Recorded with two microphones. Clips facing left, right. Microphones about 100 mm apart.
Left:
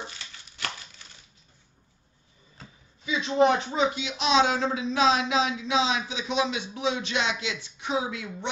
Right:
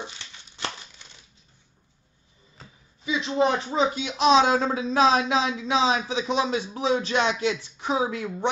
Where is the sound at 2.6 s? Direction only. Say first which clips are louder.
Even; centre (ahead or behind).